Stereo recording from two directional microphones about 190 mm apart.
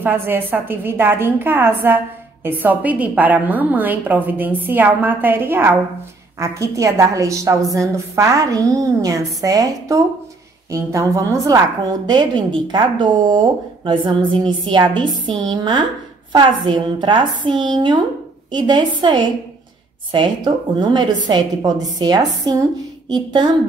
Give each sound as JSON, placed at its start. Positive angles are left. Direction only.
{"t": 0.0, "sound": "a woman's voice", "side_deg": -10}